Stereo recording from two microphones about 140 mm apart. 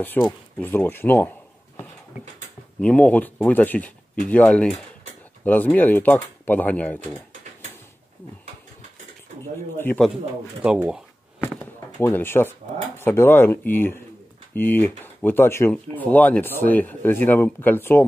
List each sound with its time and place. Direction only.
0.6 s speech: 15° left (ahead or behind)
2.8 s speech: 10° left (ahead or behind)
10.6 s speech: 5° right (ahead or behind)
11.4 s speech: 15° left (ahead or behind)